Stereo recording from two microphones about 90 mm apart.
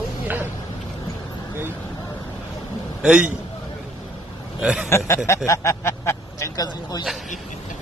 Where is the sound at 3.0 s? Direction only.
10° right (ahead or behind).